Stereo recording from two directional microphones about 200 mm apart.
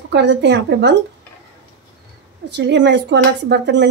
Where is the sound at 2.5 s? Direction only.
60° right (ahead or behind).